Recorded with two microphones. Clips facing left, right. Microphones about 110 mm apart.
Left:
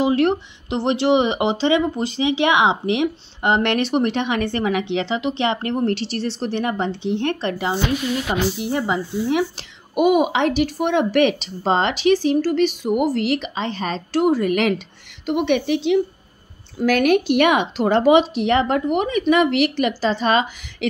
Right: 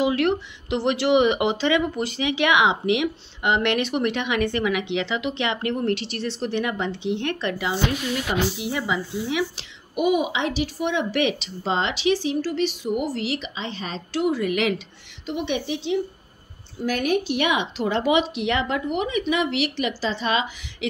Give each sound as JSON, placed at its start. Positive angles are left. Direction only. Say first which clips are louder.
{"t": 0.0, "sound": "a child's voice", "louder": "left 3 dB", "side_deg": 30}
{"t": 15.2, "sound": "speech", "louder": "left 7 dB", "side_deg": 60}
{"t": 16.7, "sound": "a child's voice", "louder": "left 6 dB", "side_deg": 85}